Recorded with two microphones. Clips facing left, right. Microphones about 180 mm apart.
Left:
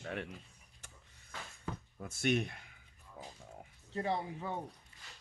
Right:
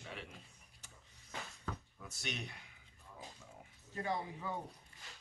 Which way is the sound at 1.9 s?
50° left (ahead or behind).